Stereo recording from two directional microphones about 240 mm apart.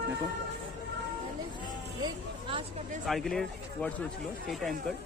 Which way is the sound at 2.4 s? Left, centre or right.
Right.